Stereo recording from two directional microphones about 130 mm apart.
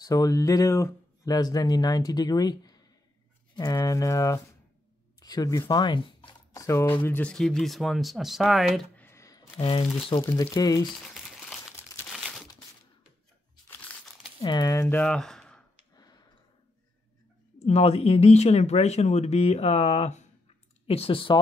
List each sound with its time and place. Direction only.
0.0 s speech: 25° left (ahead or behind)
6.5 s speech: 25° left (ahead or behind); by 8.8 s centre (ahead or behind)
8.9 s a sound: 20° left (ahead or behind)
9.6 s speech: 45° left (ahead or behind)
10.2 s speech: 20° left (ahead or behind)
10.9 s crumpling: centre (ahead or behind)
13.7 s crumpling: 10° left (ahead or behind)
14.4 s speech: 30° left (ahead or behind); by 15.6 s 5° left (ahead or behind)
17.6 s speech: 50° left (ahead or behind)
20.8 s speech: 45° left (ahead or behind)